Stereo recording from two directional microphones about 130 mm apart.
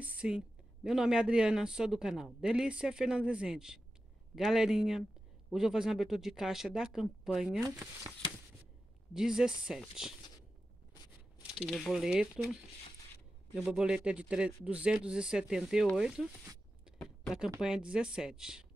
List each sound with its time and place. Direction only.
0.0 s speech: 10° right (ahead or behind)
7.6 s speech: 20° right (ahead or behind)
9.1 s speech: 5° right (ahead or behind)
11.6 s speech: centre (ahead or behind)
13.6 s speech: 5° right (ahead or behind)
17.0 s a sound: 5° left (ahead or behind)
17.6 s speech: 5° right (ahead or behind)